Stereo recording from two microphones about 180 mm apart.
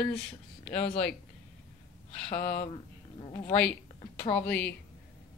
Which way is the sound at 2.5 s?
30° left (ahead or behind).